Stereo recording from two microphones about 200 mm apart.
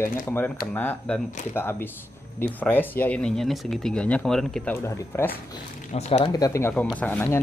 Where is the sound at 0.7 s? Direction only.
5° left (ahead or behind).